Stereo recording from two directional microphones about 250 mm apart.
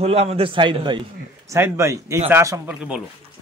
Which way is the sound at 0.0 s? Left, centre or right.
Right.